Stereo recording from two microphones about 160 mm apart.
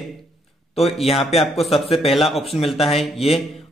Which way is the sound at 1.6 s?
35° left (ahead or behind).